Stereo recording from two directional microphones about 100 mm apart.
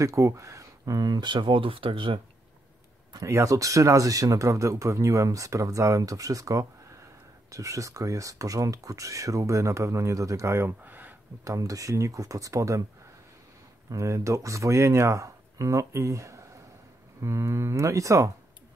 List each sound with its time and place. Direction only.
0.0 s speech: 30° right (ahead or behind); by 2.1 s 60° right (ahead or behind)
3.1 s speech: 30° right (ahead or behind)
11.4 s speech: 35° right (ahead or behind)
13.8 s speech: 30° right (ahead or behind)